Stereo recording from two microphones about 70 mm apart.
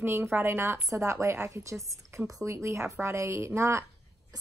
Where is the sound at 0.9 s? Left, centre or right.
Right.